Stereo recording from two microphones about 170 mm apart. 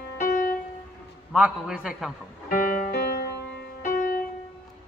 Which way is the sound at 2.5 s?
55° left (ahead or behind).